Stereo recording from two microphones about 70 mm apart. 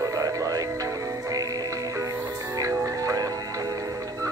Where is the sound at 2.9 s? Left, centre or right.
Right.